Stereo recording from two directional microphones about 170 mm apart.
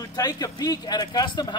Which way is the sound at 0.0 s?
20° left (ahead or behind).